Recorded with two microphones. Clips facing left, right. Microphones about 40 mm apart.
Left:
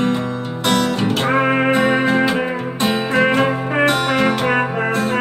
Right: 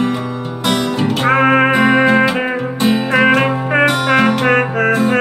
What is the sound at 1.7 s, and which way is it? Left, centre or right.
Music, centre.